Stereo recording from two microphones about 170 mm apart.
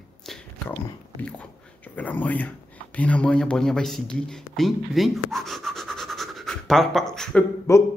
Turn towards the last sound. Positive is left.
turn(degrees=15)  # may be behind; listen again after turning